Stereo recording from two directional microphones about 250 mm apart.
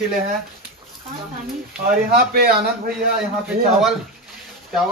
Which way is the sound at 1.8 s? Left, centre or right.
Right.